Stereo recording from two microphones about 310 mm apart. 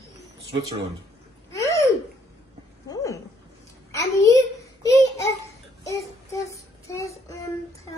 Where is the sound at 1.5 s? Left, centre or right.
Centre.